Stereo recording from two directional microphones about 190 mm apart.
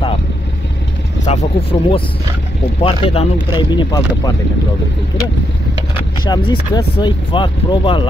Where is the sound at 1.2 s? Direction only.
35° left (ahead or behind).